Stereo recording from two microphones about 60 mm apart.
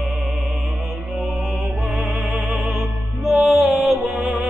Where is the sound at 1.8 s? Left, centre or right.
Centre.